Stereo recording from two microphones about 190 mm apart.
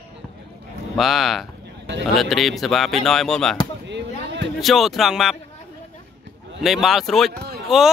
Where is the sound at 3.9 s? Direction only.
65° right (ahead or behind).